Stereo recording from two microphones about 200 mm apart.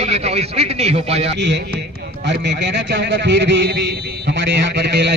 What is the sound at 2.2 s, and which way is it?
A man's voice, 60° right (ahead or behind).